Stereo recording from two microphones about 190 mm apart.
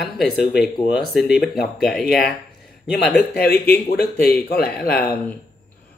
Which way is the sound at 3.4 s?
55° left (ahead or behind).